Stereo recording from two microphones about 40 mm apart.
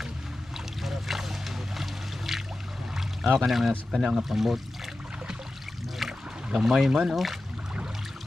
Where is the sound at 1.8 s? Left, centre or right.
Centre.